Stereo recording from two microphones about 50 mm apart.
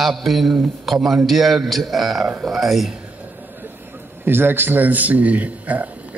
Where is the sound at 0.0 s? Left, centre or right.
Centre.